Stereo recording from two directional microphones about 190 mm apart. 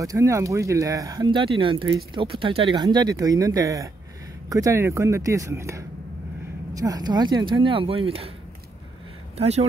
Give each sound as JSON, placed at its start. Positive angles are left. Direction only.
{"t": 0.0, "sound": "speech", "side_deg": -15}
{"t": 9.4, "sound": "speech", "side_deg": -35}